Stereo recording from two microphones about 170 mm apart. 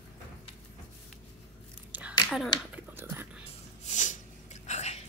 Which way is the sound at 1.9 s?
10° right (ahead or behind).